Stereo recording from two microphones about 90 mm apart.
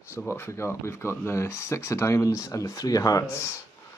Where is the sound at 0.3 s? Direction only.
30° left (ahead or behind).